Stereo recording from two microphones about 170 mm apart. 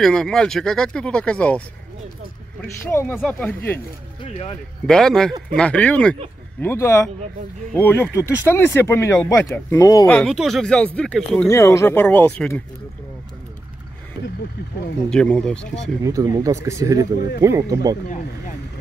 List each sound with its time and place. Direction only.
0.0 s speech: 5° left (ahead or behind)
2.9 s speech: 15° left (ahead or behind)
4.3 s speech: 35° left (ahead or behind)
4.8 s speech: 5° left (ahead or behind); by 10.0 s 20° left (ahead or behind)
10.0 s speech: 5° left (ahead or behind)
11.4 s speech: 15° left (ahead or behind)
15.0 s speech: 5° left (ahead or behind)
16.0 s speech: 20° right (ahead or behind)